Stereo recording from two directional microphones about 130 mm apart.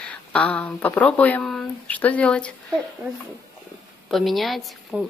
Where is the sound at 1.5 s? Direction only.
10° left (ahead or behind).